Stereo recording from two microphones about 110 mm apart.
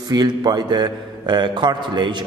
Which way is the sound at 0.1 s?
40° right (ahead or behind).